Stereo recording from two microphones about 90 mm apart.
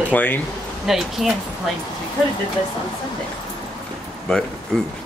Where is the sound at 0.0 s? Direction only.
20° left (ahead or behind).